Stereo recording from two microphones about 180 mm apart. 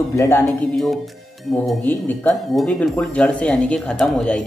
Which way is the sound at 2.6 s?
5° left (ahead or behind).